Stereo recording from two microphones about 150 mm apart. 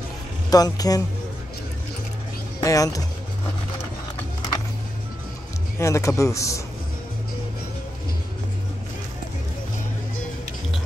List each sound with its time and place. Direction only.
0.5 s a man's voice: 25° left (ahead or behind)
2.6 s a man's voice: 20° left (ahead or behind)
5.8 s a man's voice: 20° left (ahead or behind)